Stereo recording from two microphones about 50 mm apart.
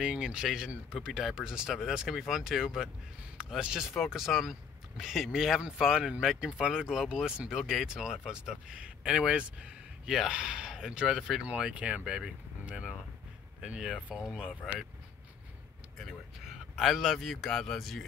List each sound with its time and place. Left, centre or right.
0.0 s speech: right
10.0 s speech: centre
11.4 s speech: right
14.5 s speech: left
16.7 s speech: centre